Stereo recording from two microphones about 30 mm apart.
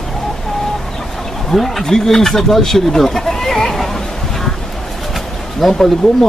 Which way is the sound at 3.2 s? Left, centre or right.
Centre.